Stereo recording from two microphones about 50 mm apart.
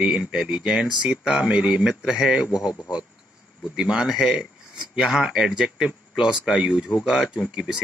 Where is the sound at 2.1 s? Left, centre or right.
Centre.